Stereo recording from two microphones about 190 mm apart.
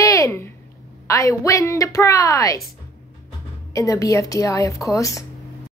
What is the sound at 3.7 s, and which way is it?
A woman's voice, 15° left (ahead or behind).